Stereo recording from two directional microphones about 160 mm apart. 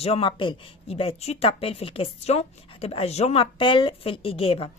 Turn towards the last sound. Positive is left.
turn(degrees=35)  # may be behind; listen again after turning